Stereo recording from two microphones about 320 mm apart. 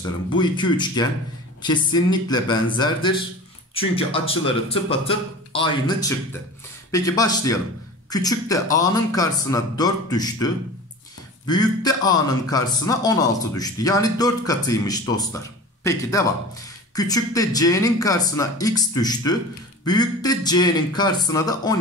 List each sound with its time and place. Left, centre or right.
0.3 s a man's voice: centre